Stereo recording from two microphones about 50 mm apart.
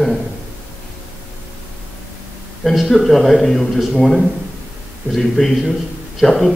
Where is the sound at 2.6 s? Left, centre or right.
Centre.